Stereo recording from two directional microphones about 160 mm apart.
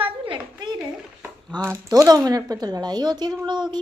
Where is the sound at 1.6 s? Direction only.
15° right (ahead or behind).